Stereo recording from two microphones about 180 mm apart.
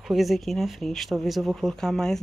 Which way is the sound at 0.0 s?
Centre (ahead or behind).